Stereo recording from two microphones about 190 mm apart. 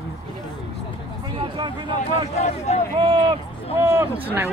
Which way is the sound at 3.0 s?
25° right (ahead or behind).